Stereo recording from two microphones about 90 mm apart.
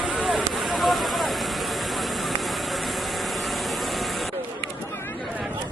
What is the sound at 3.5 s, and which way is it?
Vehicle, centre (ahead or behind).